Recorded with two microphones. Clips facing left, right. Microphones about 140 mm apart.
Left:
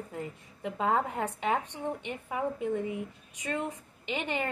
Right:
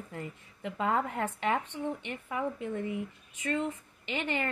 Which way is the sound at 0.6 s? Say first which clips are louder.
Left 1 dB; 25° left (ahead or behind).